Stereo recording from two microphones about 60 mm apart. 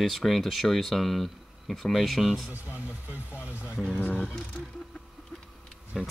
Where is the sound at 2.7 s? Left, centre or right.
Right.